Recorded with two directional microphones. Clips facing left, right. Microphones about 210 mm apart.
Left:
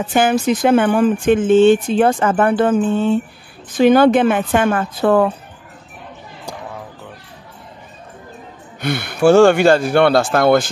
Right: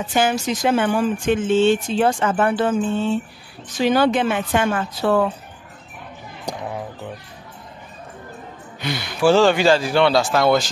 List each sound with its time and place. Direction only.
0.0 s a woman's voice: 55° left (ahead or behind)
8.8 s speech: 55° left (ahead or behind)